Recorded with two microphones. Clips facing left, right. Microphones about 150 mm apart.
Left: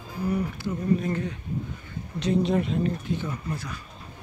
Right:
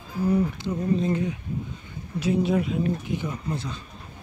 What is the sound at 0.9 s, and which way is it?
Speech, 20° right (ahead or behind).